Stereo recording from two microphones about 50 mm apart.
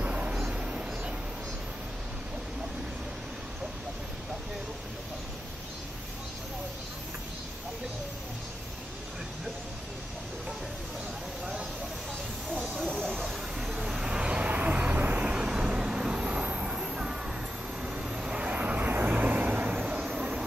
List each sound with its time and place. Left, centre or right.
0.0 s a sound: right
12.8 s vehicle: centre
13.6 s vehicle: centre; by 15.2 s right
15.2 s vehicle: centre
20.2 s vehicle: centre